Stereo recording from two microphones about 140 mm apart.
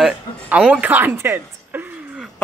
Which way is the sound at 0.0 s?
5° right (ahead or behind).